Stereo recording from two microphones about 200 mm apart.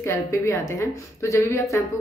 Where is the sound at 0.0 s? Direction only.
15° left (ahead or behind).